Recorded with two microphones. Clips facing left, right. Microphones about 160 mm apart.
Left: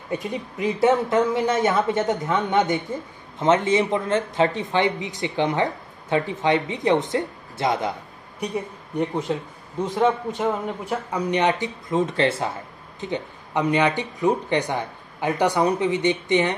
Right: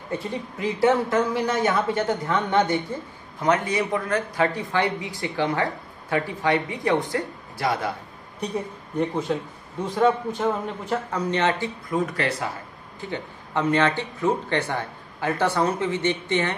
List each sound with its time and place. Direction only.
0.1 s speech: 15° left (ahead or behind)
9.8 s speech: 20° left (ahead or behind)